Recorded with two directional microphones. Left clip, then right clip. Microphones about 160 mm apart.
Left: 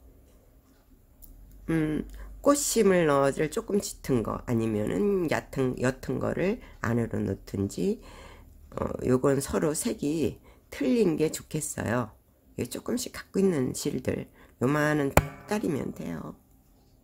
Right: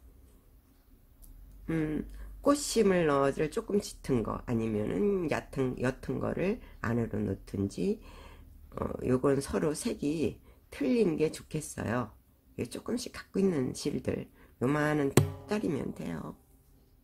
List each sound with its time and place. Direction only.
1.7 s speech: 10° left (ahead or behind)